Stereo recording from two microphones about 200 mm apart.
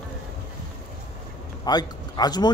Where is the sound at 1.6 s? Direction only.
20° left (ahead or behind).